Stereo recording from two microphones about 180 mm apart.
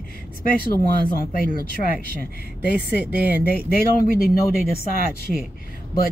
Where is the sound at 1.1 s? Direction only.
55° left (ahead or behind).